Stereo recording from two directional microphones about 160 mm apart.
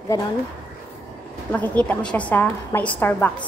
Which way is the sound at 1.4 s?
10° left (ahead or behind).